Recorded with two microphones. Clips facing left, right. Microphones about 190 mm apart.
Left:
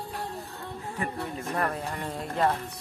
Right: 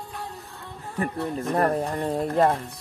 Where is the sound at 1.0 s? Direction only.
35° right (ahead or behind).